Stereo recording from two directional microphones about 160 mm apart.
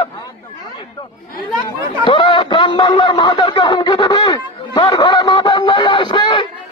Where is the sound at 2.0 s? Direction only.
30° left (ahead or behind).